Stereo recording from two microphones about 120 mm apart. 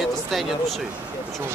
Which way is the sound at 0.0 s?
Centre (ahead or behind).